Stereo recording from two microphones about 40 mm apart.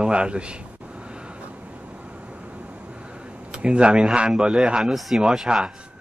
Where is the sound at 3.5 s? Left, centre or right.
Right.